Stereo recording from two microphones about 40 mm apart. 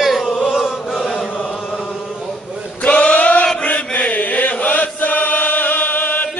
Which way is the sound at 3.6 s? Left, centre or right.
Left.